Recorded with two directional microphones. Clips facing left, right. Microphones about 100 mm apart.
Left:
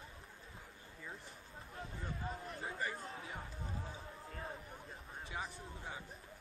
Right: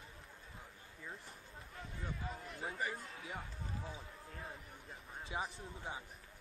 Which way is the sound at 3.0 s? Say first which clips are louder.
Left 2 dB; 35° left (ahead or behind).